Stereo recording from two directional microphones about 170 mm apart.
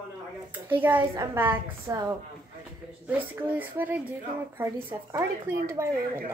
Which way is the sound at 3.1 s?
10° right (ahead or behind).